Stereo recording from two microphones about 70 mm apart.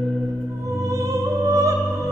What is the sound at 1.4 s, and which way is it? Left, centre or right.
Opera, right.